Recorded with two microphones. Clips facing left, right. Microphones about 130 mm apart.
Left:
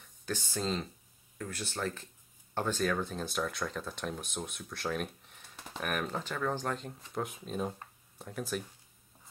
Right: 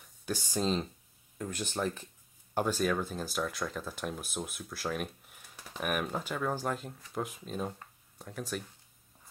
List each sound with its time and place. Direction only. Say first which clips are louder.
0.2 s speech: right 3 dB; 10° right (ahead or behind)